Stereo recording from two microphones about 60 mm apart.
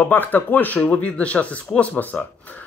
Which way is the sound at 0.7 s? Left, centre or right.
Left.